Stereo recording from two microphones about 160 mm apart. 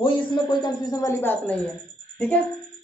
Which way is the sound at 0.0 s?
30° left (ahead or behind).